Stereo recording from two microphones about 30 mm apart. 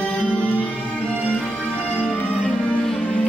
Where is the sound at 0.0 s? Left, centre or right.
Left.